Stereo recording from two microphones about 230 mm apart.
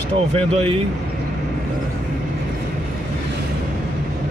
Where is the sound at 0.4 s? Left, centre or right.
Right.